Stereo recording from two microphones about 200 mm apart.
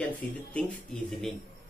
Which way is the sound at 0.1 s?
5° left (ahead or behind).